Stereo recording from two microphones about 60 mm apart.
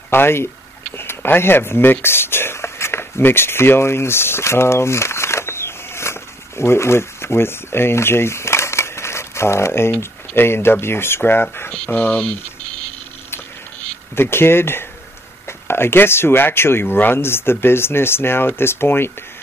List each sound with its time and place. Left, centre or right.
0.1 s speech: left
14.1 s speech: left